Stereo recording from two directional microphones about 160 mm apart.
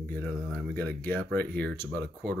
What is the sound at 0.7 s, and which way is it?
Speech, 15° left (ahead or behind).